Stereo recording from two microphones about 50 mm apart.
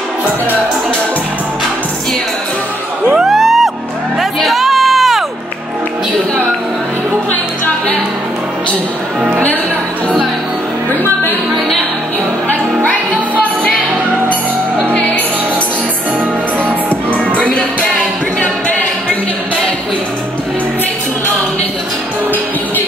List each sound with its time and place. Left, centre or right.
3.3 s music: centre
16.9 s music: left